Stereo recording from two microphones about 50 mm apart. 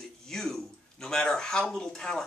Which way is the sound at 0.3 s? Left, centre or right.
Centre.